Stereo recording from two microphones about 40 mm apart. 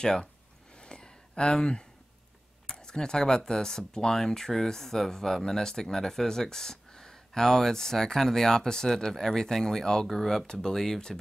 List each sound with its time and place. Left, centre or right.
0.0 s speech: centre
0.7 s a sound: left
2.6 s speech: centre
10.4 s speech: centre